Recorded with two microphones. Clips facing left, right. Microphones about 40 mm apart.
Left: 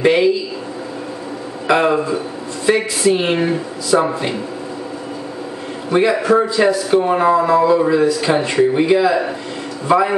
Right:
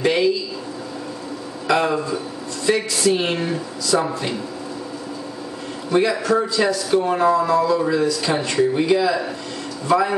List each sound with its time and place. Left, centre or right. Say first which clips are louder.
0.0 s a man's voice: left 5 dB; left
1.7 s a man's voice: left 4 dB; left
5.9 s a man's voice: left 4 dB; left